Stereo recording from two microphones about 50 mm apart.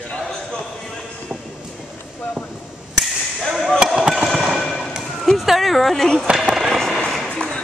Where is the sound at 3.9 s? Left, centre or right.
Centre.